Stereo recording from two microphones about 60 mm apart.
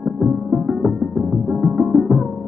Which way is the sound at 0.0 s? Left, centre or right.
Centre.